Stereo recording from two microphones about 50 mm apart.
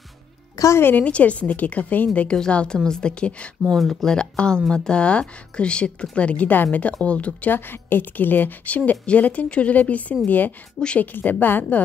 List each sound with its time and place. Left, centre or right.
0.7 s a woman's voice: left
1.0 s speech: left
2.1 s speech: centre
3.6 s speech: centre; by 7.5 s left
7.5 s a woman's voice: left